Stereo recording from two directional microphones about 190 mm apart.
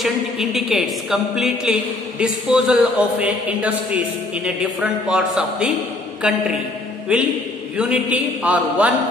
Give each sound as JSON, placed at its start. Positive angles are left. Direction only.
{"t": 0.0, "sound": "a woman's voice", "side_deg": 0}
{"t": 7.7, "sound": "a man's voice", "side_deg": -5}